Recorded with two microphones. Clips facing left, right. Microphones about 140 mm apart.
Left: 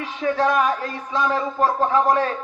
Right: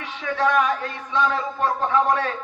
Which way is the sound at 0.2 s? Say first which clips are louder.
Left 2 dB; 35° left (ahead or behind).